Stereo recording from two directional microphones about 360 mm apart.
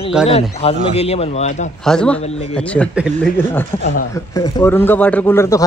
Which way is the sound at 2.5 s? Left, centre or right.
Centre.